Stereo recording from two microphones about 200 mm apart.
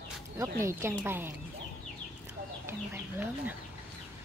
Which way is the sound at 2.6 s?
10° right (ahead or behind).